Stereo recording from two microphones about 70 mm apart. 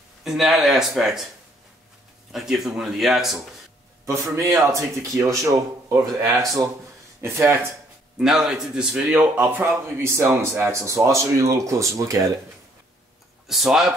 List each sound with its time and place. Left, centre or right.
0.2 s speech: centre
2.3 s speech: centre
4.0 s speech: right
7.2 s speech: right
8.2 s a man's voice: centre
9.4 s speech: right
13.5 s a man's voice: centre